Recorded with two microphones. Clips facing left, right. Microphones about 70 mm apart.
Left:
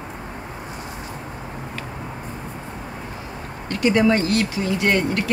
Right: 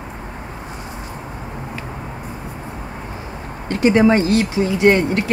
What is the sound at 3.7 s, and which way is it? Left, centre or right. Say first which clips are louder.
Speech: right 4 dB; right.